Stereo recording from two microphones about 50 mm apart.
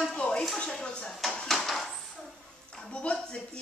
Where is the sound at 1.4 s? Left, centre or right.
Centre.